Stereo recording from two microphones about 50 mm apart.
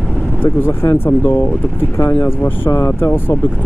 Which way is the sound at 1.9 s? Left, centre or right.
Left.